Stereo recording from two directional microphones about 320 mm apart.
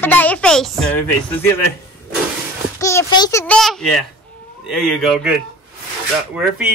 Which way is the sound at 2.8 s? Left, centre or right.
Centre.